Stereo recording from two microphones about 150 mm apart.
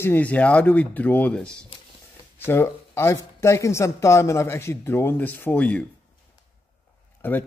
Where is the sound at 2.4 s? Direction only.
15° left (ahead or behind).